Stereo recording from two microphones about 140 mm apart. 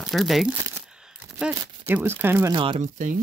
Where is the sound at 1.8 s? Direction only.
15° right (ahead or behind).